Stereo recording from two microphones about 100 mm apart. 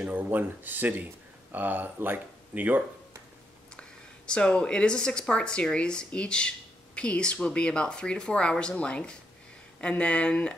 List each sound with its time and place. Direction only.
0.0 s speech: 20° right (ahead or behind)
4.3 s speech: 10° left (ahead or behind)